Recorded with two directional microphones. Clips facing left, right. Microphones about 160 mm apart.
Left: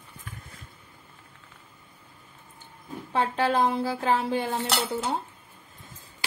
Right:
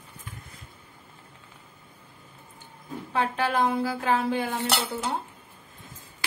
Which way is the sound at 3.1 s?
30° left (ahead or behind).